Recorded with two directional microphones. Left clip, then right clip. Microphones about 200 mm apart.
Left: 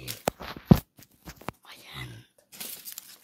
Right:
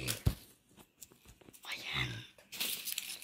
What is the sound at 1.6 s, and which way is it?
Whispering, centre (ahead or behind).